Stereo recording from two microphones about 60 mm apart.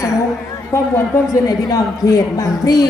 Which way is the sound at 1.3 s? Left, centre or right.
Left.